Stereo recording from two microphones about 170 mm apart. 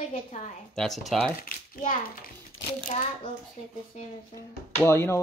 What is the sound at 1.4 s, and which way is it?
Speech, 50° left (ahead or behind).